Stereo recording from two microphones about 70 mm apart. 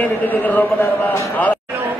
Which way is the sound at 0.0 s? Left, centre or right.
Left.